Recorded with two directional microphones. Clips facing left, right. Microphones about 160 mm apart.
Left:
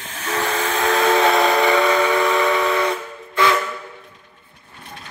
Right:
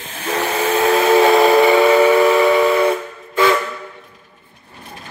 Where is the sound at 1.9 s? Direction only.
10° right (ahead or behind).